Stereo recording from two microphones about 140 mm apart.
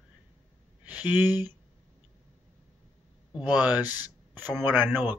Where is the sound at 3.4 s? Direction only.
10° right (ahead or behind).